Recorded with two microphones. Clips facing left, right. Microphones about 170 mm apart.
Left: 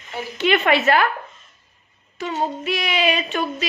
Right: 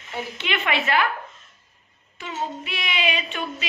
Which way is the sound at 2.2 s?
40° left (ahead or behind).